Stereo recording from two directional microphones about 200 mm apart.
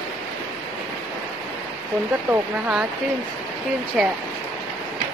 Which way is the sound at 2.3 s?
5° right (ahead or behind).